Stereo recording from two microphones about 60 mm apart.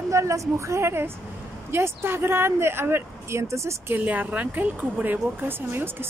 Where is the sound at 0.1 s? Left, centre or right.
Right.